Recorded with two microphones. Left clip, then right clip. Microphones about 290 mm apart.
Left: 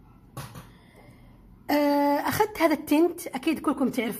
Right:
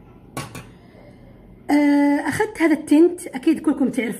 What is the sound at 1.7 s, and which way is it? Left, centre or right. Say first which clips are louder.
A woman's voice: right 5 dB; left.